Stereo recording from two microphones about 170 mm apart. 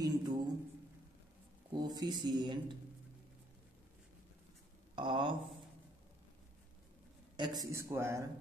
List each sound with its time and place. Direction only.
0.0 s a sound: 20° right (ahead or behind)
1.7 s speech: 25° right (ahead or behind)
4.9 s speech: 30° right (ahead or behind)
7.3 s speech: 25° right (ahead or behind)